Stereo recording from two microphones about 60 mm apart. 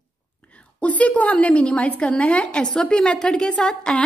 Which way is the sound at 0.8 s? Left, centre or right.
Left.